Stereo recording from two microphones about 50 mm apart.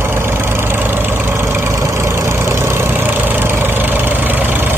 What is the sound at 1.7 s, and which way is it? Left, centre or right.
Vehicle, right.